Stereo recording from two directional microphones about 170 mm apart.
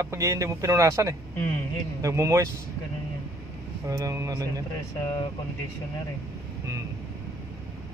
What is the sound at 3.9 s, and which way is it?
Speech, 20° right (ahead or behind).